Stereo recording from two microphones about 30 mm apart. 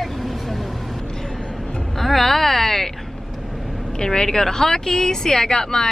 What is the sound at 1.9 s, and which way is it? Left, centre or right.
Speech, centre.